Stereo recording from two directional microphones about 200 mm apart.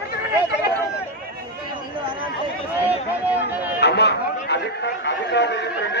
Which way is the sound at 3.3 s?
10° right (ahead or behind).